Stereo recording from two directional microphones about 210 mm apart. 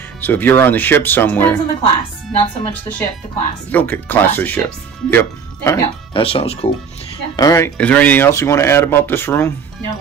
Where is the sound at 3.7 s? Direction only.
10° left (ahead or behind).